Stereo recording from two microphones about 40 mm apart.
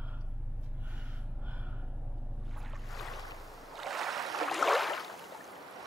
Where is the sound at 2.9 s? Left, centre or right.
Centre.